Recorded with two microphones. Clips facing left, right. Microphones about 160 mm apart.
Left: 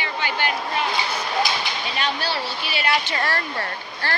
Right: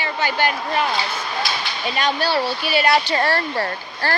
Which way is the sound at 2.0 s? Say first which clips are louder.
Right 7 dB; 45° right (ahead or behind).